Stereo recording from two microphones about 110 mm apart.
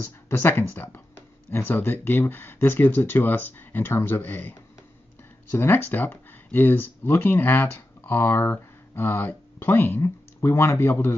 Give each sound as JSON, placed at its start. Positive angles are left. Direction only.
{"t": 0.0, "sound": "speech", "side_deg": 25}